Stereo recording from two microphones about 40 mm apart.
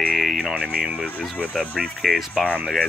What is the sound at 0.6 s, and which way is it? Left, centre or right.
Speech, right.